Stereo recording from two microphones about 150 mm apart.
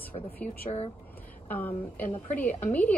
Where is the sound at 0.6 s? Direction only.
40° left (ahead or behind).